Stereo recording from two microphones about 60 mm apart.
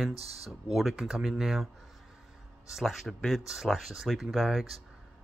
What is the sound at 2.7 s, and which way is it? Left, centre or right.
Speech, centre.